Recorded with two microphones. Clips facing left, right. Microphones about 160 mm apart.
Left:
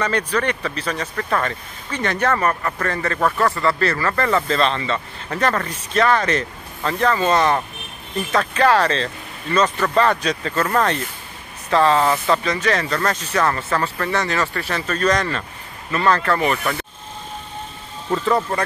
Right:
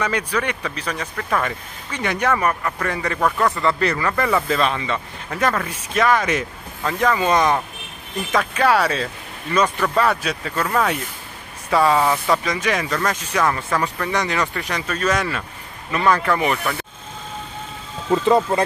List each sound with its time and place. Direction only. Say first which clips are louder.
0.0 s speech: left 2 dB; 10° right (ahead or behind)
3.2 s speech: even; centre (ahead or behind)
3.6 s speech: even; 15° right (ahead or behind)
18.1 s speech: right 3 dB; 20° right (ahead or behind)